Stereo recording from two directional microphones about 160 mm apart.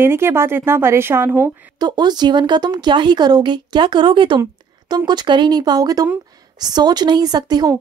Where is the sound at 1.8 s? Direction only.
25° right (ahead or behind).